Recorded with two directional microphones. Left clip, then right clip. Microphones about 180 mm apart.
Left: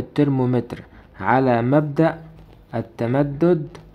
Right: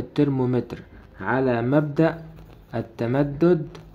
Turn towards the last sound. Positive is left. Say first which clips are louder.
# left 1 dB
turn(degrees=15)  # may be behind; listen again after turning